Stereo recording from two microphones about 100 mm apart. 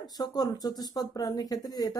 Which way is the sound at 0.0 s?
40° left (ahead or behind).